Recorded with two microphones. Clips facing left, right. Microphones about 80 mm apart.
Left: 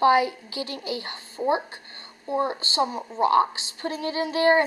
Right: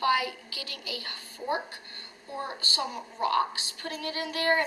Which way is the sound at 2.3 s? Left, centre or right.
Left.